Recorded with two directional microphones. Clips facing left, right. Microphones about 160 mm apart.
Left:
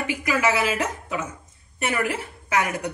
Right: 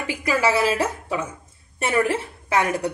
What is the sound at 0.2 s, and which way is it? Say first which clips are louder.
Speech: right 3 dB; 35° right (ahead or behind).